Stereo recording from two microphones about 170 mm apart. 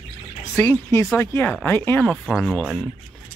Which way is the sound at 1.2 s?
10° left (ahead or behind).